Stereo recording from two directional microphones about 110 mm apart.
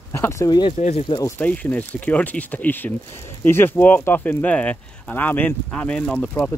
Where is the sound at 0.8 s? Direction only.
65° left (ahead or behind).